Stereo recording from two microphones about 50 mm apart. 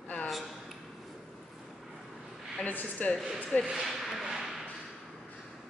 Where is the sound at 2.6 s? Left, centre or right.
Left.